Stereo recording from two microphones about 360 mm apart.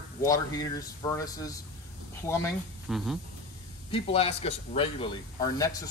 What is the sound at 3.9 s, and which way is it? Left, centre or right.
Speech, centre.